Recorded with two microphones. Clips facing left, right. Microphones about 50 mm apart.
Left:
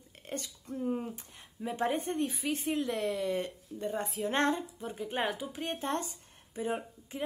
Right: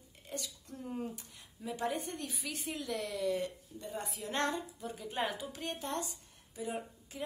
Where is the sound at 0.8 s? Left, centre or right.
Centre.